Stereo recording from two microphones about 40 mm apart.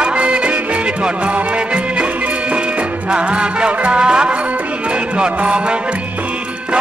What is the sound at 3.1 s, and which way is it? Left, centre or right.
Music, right.